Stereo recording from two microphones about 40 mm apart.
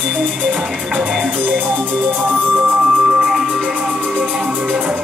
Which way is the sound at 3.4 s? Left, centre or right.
Right.